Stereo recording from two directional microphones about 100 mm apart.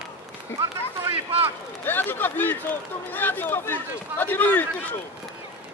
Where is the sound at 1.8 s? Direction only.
20° left (ahead or behind).